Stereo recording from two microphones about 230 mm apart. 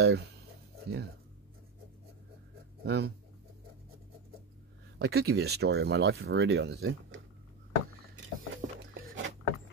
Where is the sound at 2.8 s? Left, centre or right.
Right.